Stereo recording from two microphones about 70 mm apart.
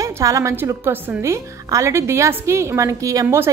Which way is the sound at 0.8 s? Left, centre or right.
Right.